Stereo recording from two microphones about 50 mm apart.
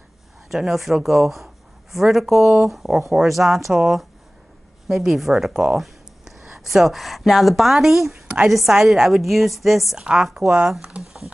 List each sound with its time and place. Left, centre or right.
0.5 s speech: centre
4.8 s speech: centre
5.5 s speech: centre
9.9 s speech: centre
10.2 s speech: centre
10.9 s speech: right